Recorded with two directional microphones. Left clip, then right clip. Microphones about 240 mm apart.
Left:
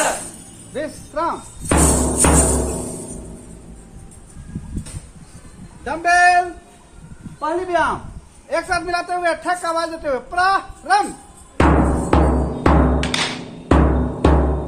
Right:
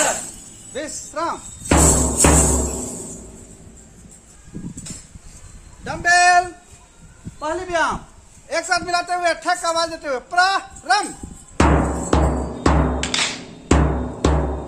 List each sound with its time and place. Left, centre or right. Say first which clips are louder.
0.7 s music: left 2 dB; right
5.9 s speech: left 1 dB; right
7.3 s a man's voice: left 2 dB; right
11.5 s music: left 2 dB; right